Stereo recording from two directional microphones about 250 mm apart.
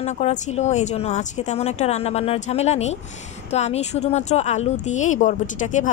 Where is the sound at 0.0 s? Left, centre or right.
Left.